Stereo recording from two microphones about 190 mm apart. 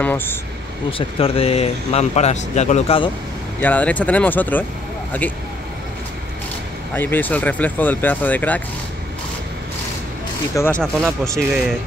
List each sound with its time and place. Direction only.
0.0 s speech: 10° left (ahead or behind)
0.9 s speech: 30° left (ahead or behind)
3.6 s speech: 10° left (ahead or behind)
6.9 s speech: 10° left (ahead or behind)
10.5 s speech: 10° left (ahead or behind)